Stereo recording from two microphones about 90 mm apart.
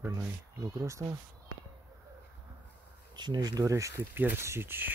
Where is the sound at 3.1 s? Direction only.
50° right (ahead or behind); by 4.1 s 35° right (ahead or behind).